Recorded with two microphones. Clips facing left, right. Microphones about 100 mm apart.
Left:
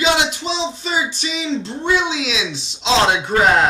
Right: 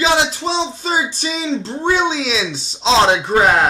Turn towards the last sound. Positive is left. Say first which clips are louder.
# right 3 dB
turn(degrees=-30)  # may be behind; listen again after turning